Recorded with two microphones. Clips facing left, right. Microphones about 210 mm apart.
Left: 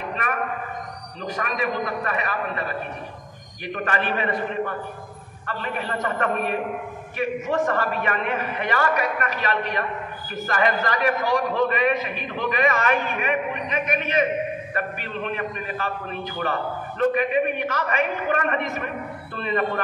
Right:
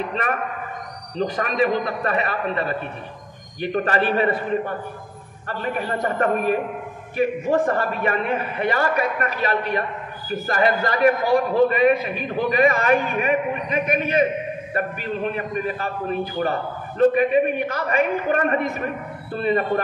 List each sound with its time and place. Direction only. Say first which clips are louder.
0.1 s a man's voice: right 2 dB; 35° right (ahead or behind)